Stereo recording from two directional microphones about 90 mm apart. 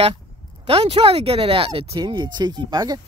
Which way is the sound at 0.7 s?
90° right.